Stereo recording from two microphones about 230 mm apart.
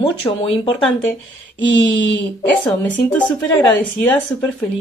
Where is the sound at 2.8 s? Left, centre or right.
Centre.